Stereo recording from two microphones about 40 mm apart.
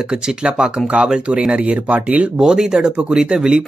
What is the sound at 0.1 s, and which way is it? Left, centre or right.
Speech, centre.